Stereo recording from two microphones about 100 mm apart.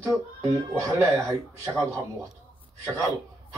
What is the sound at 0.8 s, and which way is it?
A man's voice, 35° right (ahead or behind).